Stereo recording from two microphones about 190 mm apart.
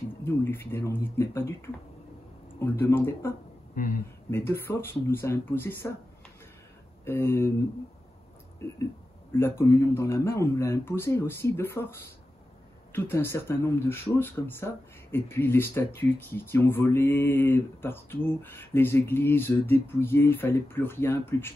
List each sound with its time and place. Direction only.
0.2 s speech: 10° left (ahead or behind)
2.6 s speech: 10° left (ahead or behind)
3.7 s speech: 45° left (ahead or behind)
4.3 s speech: 10° left (ahead or behind)
7.1 s speech: 10° left (ahead or behind)
9.3 s speech: 15° left (ahead or behind)
12.9 s speech: 10° left (ahead or behind)